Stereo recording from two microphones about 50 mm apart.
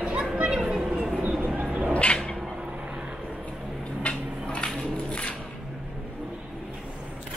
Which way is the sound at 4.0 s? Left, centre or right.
Left.